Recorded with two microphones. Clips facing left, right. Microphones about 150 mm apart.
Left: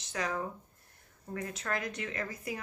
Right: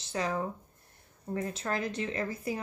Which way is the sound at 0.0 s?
30° right (ahead or behind).